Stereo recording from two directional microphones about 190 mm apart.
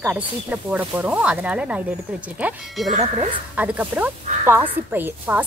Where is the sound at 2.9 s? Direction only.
35° right (ahead or behind).